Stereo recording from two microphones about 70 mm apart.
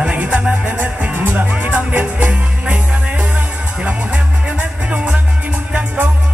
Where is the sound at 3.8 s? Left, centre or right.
Centre.